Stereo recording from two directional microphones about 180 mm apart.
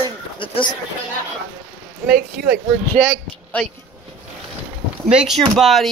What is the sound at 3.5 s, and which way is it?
Speech, 10° left (ahead or behind).